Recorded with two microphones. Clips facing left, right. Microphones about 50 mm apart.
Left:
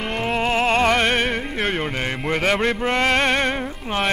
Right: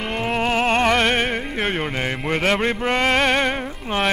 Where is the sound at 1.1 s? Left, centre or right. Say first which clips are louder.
Even; centre.